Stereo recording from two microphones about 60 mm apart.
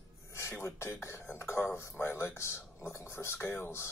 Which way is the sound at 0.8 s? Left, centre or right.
Left.